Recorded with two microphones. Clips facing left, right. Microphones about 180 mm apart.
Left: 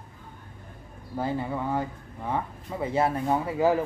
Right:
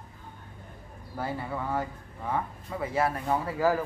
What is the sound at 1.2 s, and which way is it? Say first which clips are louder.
Speech: left 4 dB; 20° left (ahead or behind).